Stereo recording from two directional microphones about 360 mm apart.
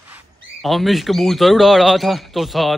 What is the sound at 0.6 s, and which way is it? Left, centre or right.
Speech, centre.